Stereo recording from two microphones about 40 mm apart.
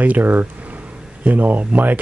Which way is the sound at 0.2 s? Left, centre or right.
Right.